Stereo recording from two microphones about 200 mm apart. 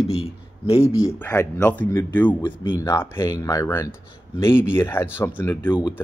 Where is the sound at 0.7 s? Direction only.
30° left (ahead or behind).